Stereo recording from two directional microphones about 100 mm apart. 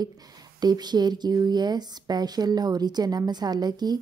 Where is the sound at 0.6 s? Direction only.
45° right (ahead or behind).